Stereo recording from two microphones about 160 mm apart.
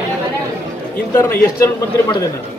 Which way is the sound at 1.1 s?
15° left (ahead or behind).